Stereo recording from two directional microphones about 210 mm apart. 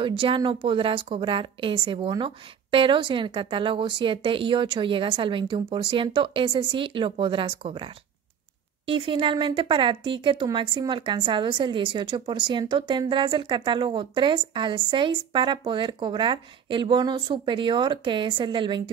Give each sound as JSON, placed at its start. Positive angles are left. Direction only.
{"t": 0.0, "sound": "speech", "side_deg": -25}